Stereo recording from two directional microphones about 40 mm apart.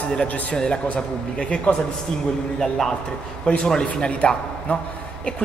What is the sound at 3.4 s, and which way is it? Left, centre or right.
A man's voice, left.